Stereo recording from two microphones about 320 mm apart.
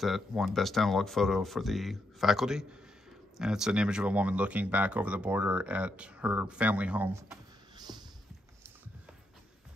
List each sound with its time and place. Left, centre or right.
0.0 s speech: centre